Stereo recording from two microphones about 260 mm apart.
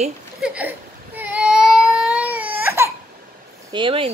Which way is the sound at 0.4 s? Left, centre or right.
Centre.